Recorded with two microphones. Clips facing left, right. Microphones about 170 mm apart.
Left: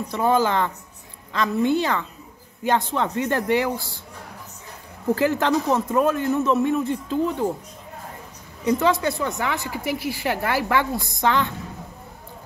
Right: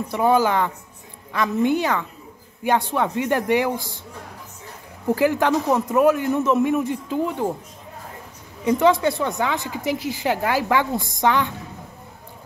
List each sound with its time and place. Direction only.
0.1 s a woman's voice: 10° right (ahead or behind)
5.1 s a woman's voice: 15° right (ahead or behind)
8.6 s a woman's voice: 15° right (ahead or behind)